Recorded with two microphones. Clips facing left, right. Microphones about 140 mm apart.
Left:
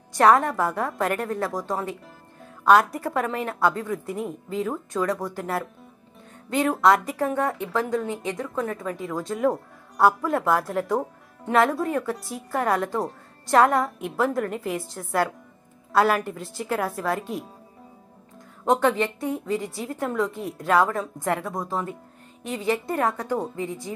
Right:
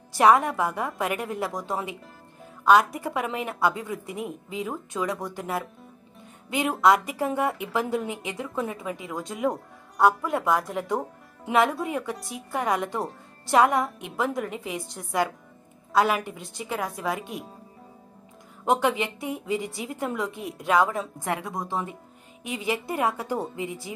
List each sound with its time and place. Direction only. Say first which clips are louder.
0.1 s a woman's voice: left 1 dB; 5° right (ahead or behind)
18.7 s a woman's voice: left 2 dB; 5° right (ahead or behind)